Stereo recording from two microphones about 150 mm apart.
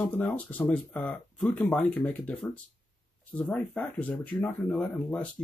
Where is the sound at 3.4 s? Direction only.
10° left (ahead or behind).